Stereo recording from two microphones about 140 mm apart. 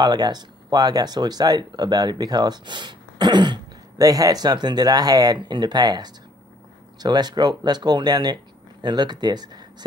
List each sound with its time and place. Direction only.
0.0 s speech: 30° right (ahead or behind)